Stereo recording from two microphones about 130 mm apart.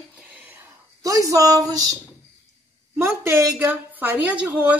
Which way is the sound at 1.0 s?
25° right (ahead or behind).